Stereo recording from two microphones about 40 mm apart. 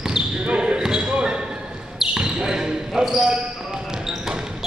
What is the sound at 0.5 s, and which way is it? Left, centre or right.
Basketball bounce, right.